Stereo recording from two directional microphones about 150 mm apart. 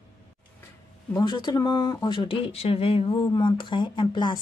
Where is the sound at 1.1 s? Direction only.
30° left (ahead or behind).